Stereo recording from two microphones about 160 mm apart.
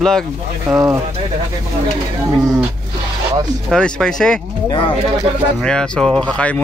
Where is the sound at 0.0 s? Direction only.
5° left (ahead or behind).